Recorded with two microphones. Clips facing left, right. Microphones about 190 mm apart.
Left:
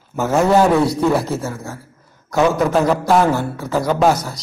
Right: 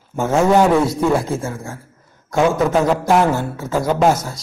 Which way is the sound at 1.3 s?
20° right (ahead or behind).